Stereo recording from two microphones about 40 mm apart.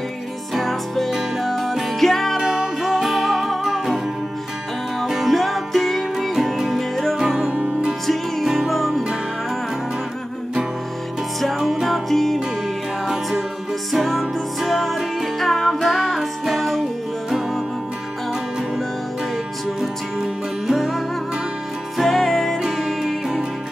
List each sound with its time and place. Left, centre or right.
0.6 s music: centre
2.4 s music: centre
5.0 s music: centre
5.3 s music: centre
7.2 s music: centre
7.4 s music: right
8.5 s music: centre
11.5 s music: centre
13.0 s music: centre
19.8 s music: centre
20.7 s music: centre